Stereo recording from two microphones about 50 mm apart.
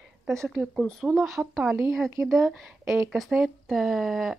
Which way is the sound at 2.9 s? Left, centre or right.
Centre.